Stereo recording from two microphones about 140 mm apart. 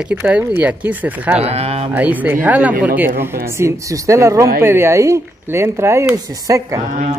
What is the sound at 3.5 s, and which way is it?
Speech, 20° right (ahead or behind).